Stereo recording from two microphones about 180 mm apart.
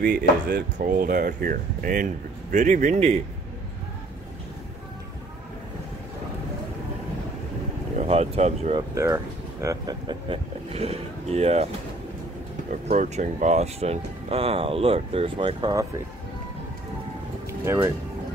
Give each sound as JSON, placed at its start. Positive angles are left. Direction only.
{"t": 0.5, "sound": "speech", "side_deg": -50}
{"t": 8.0, "sound": "speech", "side_deg": -35}
{"t": 8.7, "sound": "speech", "side_deg": -15}
{"t": 12.8, "sound": "speech", "side_deg": -40}
{"t": 17.5, "sound": "music", "side_deg": -15}